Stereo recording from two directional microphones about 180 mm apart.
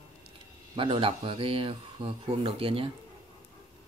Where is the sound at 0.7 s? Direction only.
30° right (ahead or behind).